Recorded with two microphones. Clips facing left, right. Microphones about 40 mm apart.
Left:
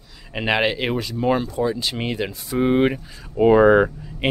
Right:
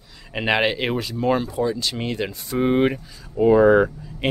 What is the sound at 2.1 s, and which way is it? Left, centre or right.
Speech, centre.